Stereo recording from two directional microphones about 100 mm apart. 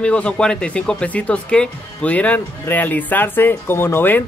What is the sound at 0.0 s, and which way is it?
Speech, 10° left (ahead or behind).